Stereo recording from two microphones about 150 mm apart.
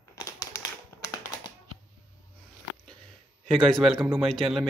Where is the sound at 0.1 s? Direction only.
20° left (ahead or behind).